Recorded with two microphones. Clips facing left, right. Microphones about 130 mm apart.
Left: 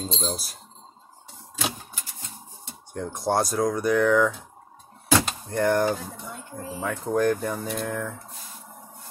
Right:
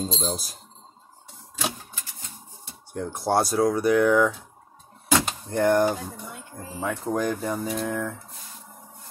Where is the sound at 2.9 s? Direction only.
5° right (ahead or behind).